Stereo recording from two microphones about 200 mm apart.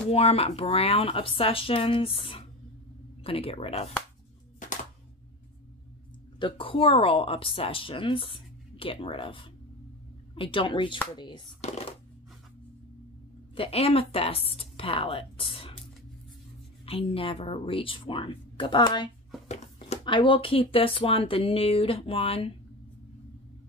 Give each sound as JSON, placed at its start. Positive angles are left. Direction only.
{"t": 0.1, "sound": "a woman's voice", "side_deg": 30}
{"t": 4.6, "sound": "music", "side_deg": 40}
{"t": 6.4, "sound": "a woman's voice", "side_deg": 25}
{"t": 13.6, "sound": "a woman's voice", "side_deg": 30}
{"t": 16.8, "sound": "a woman's voice", "side_deg": 30}
{"t": 19.4, "sound": "a woman's voice", "side_deg": 35}